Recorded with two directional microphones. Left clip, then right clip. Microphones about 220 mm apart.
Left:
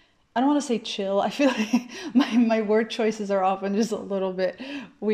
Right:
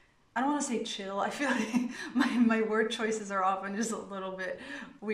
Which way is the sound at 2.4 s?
25° left (ahead or behind).